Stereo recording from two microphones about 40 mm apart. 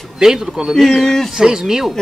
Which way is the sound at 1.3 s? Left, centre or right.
Centre.